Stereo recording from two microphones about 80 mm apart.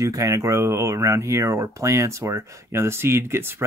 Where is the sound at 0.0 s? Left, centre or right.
Right.